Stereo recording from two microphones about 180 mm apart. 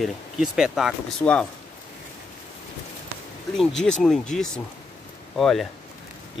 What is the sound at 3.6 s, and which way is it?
Speech, 5° left (ahead or behind).